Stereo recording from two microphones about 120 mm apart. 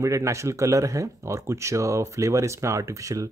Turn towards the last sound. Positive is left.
turn(degrees=-25)  # may be behind; listen again after turning